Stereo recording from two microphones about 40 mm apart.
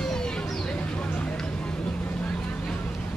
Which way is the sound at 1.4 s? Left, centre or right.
Left.